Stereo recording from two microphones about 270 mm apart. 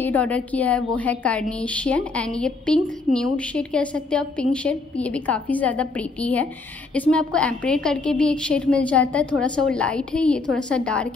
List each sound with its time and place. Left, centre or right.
0.0 s a woman's voice: centre